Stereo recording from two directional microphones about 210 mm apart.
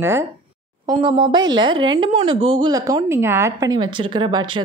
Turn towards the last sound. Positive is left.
turn(degrees=-20)  # may be behind; listen again after turning